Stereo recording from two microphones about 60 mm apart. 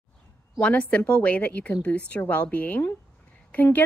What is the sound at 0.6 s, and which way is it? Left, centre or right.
A woman's voice, left.